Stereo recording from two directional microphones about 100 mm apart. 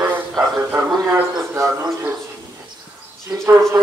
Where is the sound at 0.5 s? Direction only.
20° right (ahead or behind).